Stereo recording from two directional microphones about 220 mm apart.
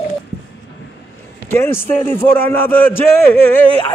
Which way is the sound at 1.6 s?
10° left (ahead or behind).